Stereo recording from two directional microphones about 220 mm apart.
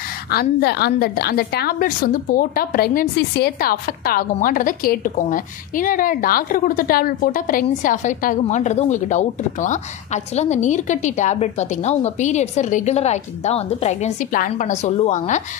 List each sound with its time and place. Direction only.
0.3 s a woman's voice: 45° left (ahead or behind)